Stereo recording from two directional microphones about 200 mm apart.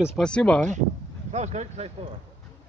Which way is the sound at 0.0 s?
Centre (ahead or behind).